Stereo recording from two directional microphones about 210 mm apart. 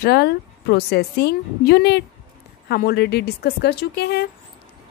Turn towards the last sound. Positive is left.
turn(degrees=50)  # may be behind; listen again after turning